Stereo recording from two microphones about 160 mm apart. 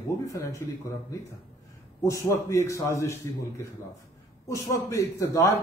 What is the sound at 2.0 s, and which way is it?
A man's voice, 20° left (ahead or behind).